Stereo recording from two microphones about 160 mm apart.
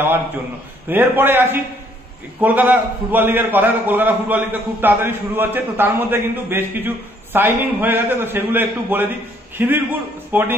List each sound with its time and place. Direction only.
0.8 s a man's voice: 10° right (ahead or behind)